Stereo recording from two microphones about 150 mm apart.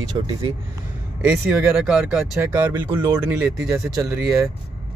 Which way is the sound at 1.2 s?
10° right (ahead or behind).